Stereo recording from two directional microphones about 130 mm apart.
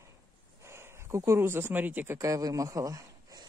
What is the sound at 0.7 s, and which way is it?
Speech, 20° right (ahead or behind).